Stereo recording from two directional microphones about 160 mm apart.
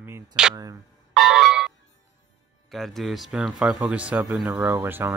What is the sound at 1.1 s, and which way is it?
Music, 5° right (ahead or behind).